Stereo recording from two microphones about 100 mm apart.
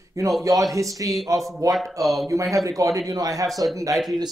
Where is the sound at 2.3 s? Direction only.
35° right (ahead or behind).